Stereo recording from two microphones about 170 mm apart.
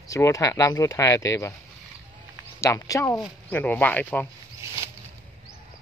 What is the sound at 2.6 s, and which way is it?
Speech, 15° left (ahead or behind).